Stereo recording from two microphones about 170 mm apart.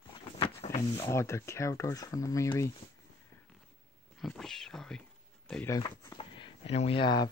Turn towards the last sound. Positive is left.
turn(degrees=25)  # may be behind; listen again after turning